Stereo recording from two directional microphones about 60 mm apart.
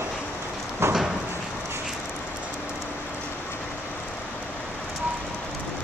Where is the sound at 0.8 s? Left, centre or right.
Right.